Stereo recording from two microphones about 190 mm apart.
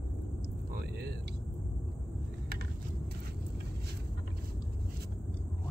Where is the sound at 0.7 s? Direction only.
55° right (ahead or behind).